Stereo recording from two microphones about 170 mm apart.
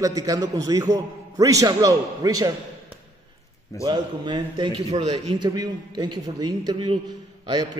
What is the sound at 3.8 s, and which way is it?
A man's voice, 25° right (ahead or behind).